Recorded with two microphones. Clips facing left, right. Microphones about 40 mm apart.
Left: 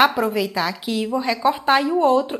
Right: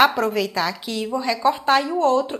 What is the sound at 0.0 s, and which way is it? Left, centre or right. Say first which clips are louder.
Speech: even; centre.